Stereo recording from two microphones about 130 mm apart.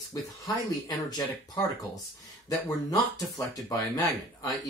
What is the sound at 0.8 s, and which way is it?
Speech, 30° left (ahead or behind).